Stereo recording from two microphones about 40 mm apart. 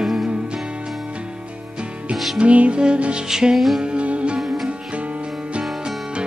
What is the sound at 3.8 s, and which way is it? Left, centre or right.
Music, right.